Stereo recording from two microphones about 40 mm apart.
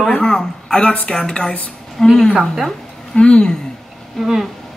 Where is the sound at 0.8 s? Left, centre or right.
Left.